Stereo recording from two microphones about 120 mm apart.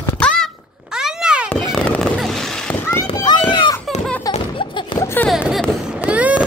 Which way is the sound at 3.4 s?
45° left (ahead or behind).